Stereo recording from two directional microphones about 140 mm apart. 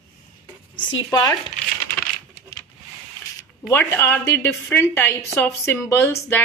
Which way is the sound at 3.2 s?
20° left (ahead or behind).